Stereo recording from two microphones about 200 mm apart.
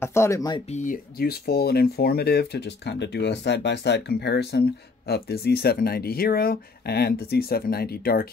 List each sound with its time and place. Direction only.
0.0 s speech: 15° left (ahead or behind)
0.7 s speech: 40° left (ahead or behind)